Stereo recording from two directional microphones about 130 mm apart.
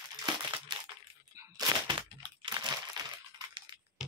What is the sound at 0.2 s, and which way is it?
Crumpling, 35° right (ahead or behind).